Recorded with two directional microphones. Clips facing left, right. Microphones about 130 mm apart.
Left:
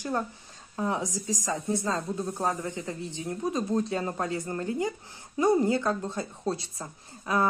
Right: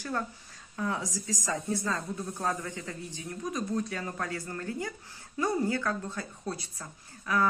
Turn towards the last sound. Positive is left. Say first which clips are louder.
# left 2 dB
turn(degrees=25)  # may be behind; listen again after turning